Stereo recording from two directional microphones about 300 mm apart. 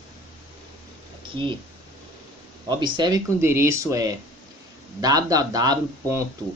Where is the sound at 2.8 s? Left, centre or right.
Centre.